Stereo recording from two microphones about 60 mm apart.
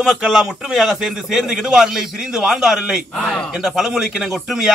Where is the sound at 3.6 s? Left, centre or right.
Centre.